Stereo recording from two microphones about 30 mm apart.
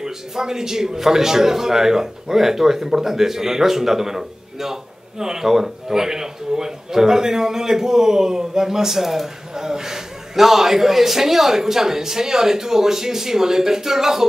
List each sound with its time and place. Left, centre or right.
0.0 s speech: centre